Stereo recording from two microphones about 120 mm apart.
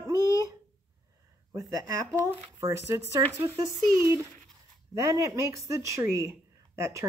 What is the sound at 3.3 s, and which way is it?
Speech, 25° right (ahead or behind).